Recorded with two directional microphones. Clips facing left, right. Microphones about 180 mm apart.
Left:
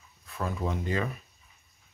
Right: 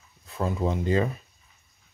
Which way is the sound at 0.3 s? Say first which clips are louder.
Right 5 dB; 25° right (ahead or behind).